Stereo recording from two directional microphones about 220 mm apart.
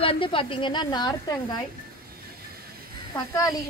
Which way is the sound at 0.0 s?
25° left (ahead or behind).